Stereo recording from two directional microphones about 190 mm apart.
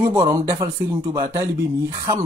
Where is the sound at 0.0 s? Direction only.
20° right (ahead or behind).